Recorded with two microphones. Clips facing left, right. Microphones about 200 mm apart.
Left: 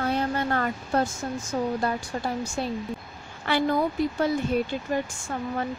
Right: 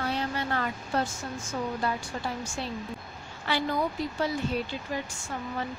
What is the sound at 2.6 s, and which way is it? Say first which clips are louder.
Speech: left 6 dB; 45° left (ahead or behind).